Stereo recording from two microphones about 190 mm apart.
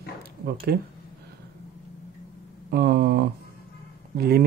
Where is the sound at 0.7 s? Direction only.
55° right (ahead or behind).